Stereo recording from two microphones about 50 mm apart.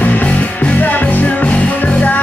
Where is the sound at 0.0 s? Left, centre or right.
Left.